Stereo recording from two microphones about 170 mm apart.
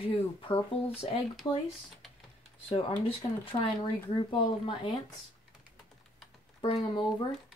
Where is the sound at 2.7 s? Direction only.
35° left (ahead or behind).